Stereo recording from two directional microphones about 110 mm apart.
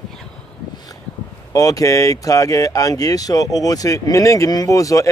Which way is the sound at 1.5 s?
30° left (ahead or behind).